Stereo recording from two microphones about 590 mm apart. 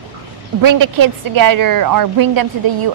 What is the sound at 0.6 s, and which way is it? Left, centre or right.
A woman's voice, right.